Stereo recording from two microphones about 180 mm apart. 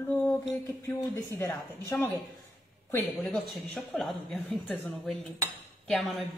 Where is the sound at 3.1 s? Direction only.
Centre (ahead or behind).